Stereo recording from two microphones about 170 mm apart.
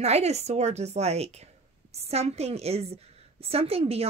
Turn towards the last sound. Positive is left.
turn(degrees=-35)  # may be behind; listen again after turning